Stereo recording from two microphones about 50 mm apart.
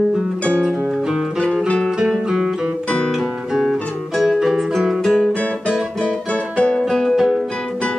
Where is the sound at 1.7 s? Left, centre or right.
Centre.